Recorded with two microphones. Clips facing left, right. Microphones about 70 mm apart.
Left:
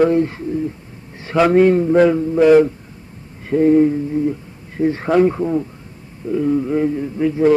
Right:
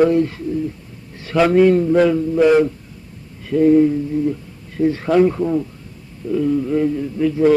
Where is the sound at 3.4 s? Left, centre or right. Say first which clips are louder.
Even; left.